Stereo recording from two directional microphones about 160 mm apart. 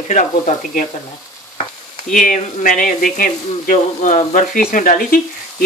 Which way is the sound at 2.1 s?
55° left (ahead or behind).